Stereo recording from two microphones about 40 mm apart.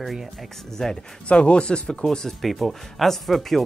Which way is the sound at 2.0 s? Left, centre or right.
Centre.